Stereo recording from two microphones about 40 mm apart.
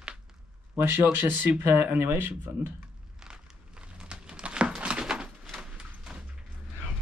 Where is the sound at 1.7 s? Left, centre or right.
Right.